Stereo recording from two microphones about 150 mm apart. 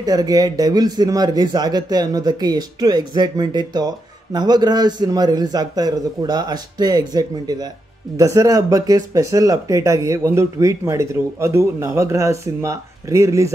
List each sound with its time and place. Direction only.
0.0 s speech: 25° right (ahead or behind)